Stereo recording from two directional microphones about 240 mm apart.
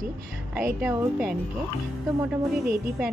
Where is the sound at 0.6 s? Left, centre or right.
Centre.